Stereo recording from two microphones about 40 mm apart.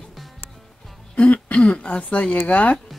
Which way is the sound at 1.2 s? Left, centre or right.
Left.